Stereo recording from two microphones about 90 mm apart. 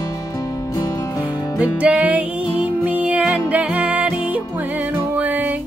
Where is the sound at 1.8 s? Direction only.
15° right (ahead or behind).